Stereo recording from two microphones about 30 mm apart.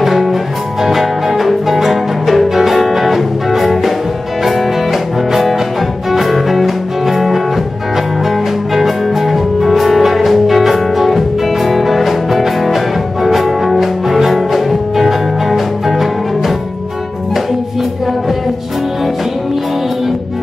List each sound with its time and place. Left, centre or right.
0.0 s music: centre
5.3 s music: centre